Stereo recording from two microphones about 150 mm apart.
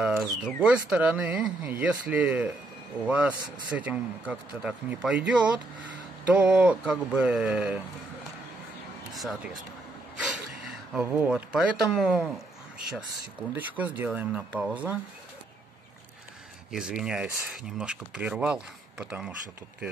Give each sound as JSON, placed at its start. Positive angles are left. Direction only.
{"t": 0.0, "sound": "speech", "side_deg": -5}
{"t": 3.3, "sound": "speech", "side_deg": -30}
{"t": 3.7, "sound": "speech", "side_deg": -10}
{"t": 9.1, "sound": "speech", "side_deg": 0}
{"t": 13.6, "sound": "speech", "side_deg": -10}
{"t": 16.7, "sound": "speech", "side_deg": -5}